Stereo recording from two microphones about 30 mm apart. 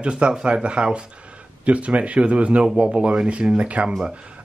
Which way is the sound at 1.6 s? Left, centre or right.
Right.